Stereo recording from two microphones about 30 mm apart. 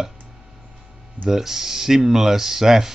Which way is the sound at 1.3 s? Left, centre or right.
Centre.